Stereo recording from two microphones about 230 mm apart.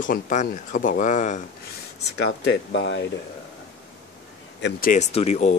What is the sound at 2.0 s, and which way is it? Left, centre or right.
Speech, left.